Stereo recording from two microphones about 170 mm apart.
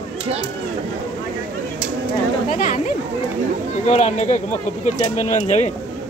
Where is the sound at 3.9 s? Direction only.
40° left (ahead or behind).